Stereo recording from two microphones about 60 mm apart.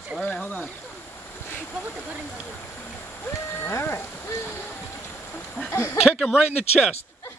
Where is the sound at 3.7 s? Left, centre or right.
Left.